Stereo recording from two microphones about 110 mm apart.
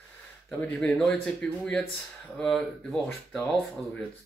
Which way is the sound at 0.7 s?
15° left (ahead or behind).